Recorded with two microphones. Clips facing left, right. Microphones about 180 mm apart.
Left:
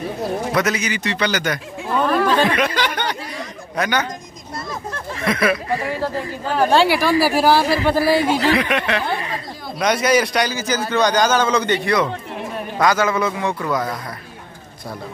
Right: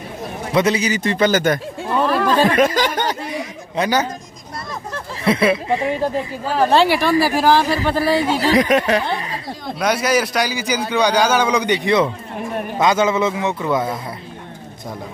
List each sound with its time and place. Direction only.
0.5 s a man's voice: 25° right (ahead or behind); by 1.6 s 45° right (ahead or behind)
1.9 s speech: centre (ahead or behind)
2.4 s a man's voice: 45° right (ahead or behind)
3.8 s a man's voice: 25° right (ahead or behind)
5.2 s a man's voice: 30° right (ahead or behind)
6.4 s speech: centre (ahead or behind)
8.4 s speech: 40° right (ahead or behind)
9.8 s a man's voice: 5° right (ahead or behind); by 13.9 s 25° right (ahead or behind)